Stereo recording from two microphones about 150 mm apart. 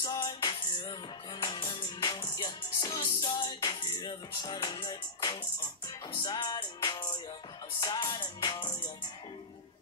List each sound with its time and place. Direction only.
0.0 s music: 30° left (ahead or behind)